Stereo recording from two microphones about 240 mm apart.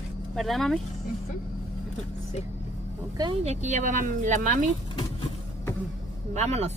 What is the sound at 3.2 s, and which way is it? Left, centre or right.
Speech, right.